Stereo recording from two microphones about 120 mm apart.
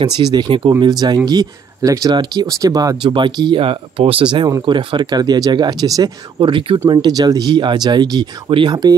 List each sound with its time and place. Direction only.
0.0 s speech: 40° right (ahead or behind)
3.1 s speech: 40° right (ahead or behind)
6.4 s speech: 45° right (ahead or behind)